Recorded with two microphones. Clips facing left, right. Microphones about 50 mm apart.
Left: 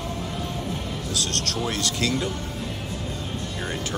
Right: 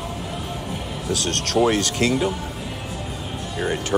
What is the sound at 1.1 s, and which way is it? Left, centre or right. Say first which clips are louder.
Speech: right 8 dB; right.